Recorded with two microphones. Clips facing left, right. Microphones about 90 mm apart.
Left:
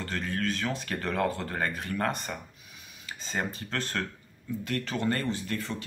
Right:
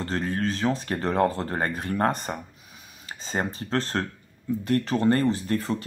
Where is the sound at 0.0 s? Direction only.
30° right (ahead or behind).